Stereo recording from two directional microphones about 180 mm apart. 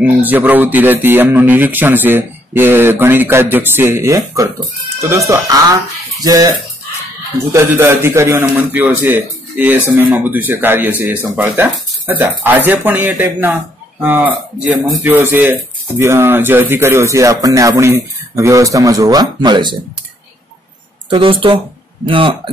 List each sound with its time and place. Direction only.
0.0 s speech: 10° right (ahead or behind)
7.5 s speech: 15° right (ahead or behind)
21.1 s speech: 30° right (ahead or behind)